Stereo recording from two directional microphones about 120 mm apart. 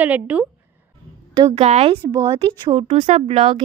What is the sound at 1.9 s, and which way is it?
Speech, 35° right (ahead or behind).